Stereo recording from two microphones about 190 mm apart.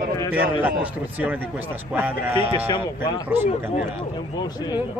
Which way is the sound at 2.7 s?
25° left (ahead or behind).